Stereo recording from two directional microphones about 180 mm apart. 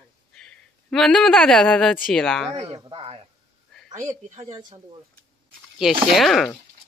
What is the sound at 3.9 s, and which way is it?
Speech, 15° right (ahead or behind).